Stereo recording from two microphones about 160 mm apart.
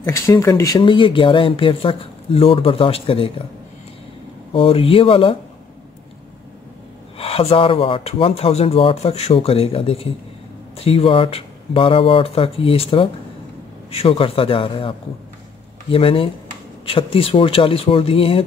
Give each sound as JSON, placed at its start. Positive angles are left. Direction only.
{"t": 0.0, "sound": "speech", "side_deg": 15}
{"t": 4.6, "sound": "speech", "side_deg": 35}
{"t": 7.2, "sound": "speech", "side_deg": 35}